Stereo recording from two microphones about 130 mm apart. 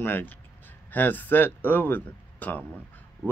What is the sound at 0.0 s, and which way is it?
A man's voice, 15° left (ahead or behind).